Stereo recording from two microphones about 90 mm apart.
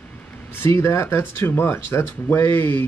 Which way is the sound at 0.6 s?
30° left (ahead or behind).